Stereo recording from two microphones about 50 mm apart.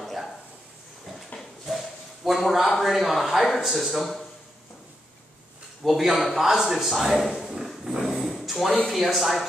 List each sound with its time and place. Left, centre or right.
0.0 s a sound: centre
1.3 s dog: left
1.7 s a sound: centre
2.7 s speech: centre
5.9 s speech: centre
8.0 s dog: centre
8.8 s speech: centre